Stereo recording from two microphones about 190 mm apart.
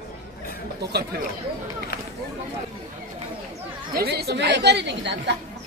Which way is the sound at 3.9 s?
55° right (ahead or behind).